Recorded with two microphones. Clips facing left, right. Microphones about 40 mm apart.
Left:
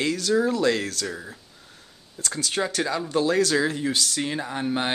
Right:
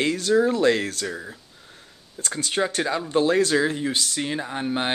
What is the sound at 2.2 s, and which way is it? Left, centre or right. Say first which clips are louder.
Speech: right 2 dB; right.